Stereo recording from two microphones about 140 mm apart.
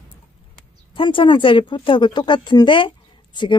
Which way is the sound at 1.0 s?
40° left (ahead or behind).